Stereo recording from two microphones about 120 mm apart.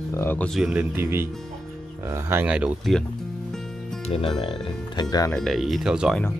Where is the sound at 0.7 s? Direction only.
20° right (ahead or behind).